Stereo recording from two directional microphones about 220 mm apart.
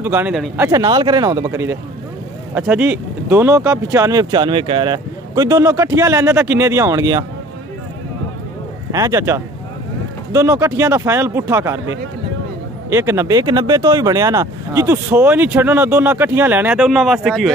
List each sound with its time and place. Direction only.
0.0 s speech: 10° right (ahead or behind)
0.7 s speech: 20° right (ahead or behind)
8.9 s speech: 15° right (ahead or behind)
12.9 s speech: 10° right (ahead or behind)